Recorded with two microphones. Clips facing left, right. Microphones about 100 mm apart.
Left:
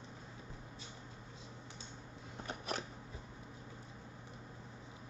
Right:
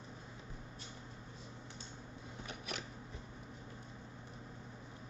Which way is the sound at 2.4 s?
40° left (ahead or behind).